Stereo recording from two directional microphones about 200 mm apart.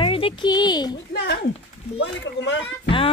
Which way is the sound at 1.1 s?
55° left (ahead or behind).